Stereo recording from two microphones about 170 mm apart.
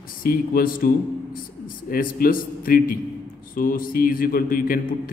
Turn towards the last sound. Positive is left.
turn(degrees=55)  # may be behind; listen again after turning